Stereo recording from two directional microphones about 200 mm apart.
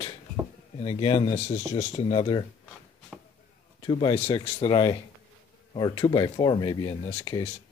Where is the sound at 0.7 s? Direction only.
30° left (ahead or behind).